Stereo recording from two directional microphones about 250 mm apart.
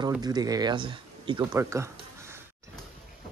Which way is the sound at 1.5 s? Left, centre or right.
Centre.